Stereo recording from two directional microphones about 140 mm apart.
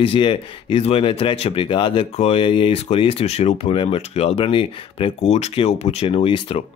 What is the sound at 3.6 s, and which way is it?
Speech, 40° left (ahead or behind).